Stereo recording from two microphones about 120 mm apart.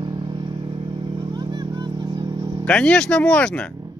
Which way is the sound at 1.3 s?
35° right (ahead or behind).